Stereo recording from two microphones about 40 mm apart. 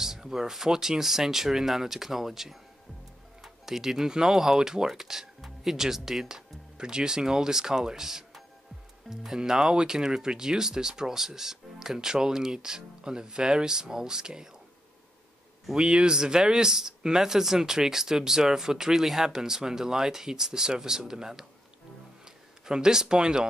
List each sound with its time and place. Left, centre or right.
0.0 s speech: centre
15.7 s speech: right
22.7 s speech: centre